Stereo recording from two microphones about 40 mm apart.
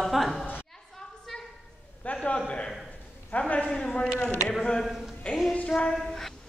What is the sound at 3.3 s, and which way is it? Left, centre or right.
Speech, left.